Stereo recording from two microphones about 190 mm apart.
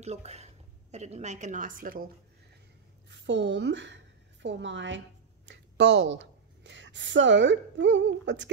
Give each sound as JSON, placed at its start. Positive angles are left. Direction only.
{"t": 0.0, "sound": "a woman's voice", "side_deg": -35}
{"t": 3.1, "sound": "a woman's voice", "side_deg": -70}